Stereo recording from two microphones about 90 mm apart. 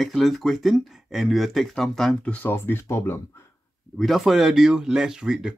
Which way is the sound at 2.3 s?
25° left (ahead or behind).